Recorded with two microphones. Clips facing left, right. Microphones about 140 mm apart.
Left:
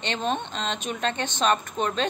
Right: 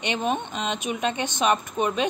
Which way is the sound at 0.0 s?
15° right (ahead or behind).